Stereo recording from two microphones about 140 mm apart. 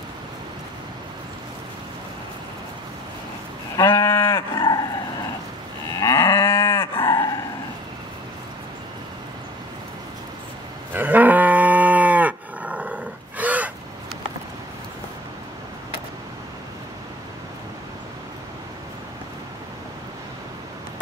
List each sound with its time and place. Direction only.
3.7 s livestock: 20° left (ahead or behind)
4.6 s livestock: 30° left (ahead or behind)
5.9 s moo: 20° left (ahead or behind)
10.9 s moo: 15° right (ahead or behind)